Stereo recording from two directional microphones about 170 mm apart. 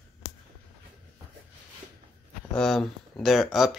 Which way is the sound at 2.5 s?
5° left (ahead or behind).